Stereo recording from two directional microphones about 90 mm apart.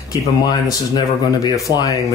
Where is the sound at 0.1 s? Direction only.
45° left (ahead or behind).